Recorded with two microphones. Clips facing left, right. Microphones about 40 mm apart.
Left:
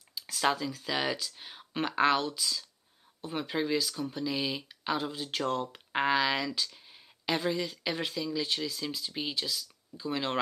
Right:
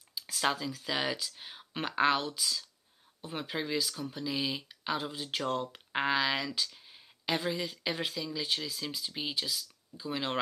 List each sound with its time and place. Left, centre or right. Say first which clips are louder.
0.1 s speech: left 2 dB; centre